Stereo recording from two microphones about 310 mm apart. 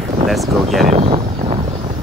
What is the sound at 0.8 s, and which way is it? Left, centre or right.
Speech, centre.